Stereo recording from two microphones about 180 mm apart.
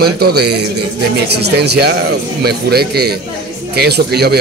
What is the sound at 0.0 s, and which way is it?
A man's voice, 60° right (ahead or behind).